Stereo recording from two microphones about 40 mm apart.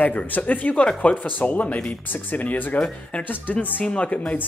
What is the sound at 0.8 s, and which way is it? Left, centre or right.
Speech, left.